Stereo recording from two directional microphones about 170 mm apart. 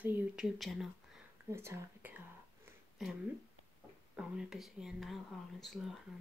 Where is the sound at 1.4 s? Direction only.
15° right (ahead or behind).